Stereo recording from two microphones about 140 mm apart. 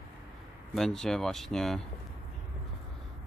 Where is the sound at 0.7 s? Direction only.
5° left (ahead or behind).